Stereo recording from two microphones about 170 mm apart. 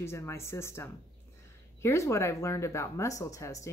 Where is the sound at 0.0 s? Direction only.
15° left (ahead or behind).